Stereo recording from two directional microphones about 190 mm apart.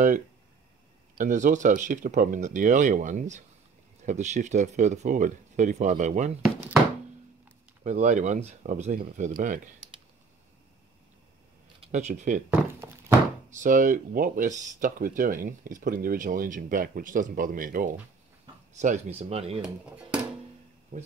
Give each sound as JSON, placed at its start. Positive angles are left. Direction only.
{"t": 1.1, "sound": "speech", "side_deg": -45}
{"t": 7.8, "sound": "speech", "side_deg": -40}
{"t": 11.8, "sound": "speech", "side_deg": -40}
{"t": 13.5, "sound": "speech", "side_deg": -40}